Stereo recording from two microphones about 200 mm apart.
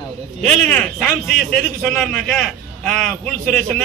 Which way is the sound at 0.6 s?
5° left (ahead or behind).